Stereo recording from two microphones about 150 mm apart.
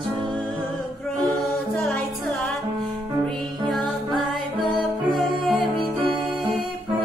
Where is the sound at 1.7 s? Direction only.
10° left (ahead or behind).